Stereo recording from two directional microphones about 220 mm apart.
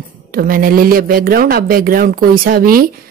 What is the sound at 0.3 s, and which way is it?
Speech, 40° right (ahead or behind).